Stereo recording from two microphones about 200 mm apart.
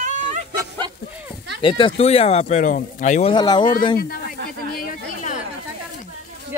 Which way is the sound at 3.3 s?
20° left (ahead or behind).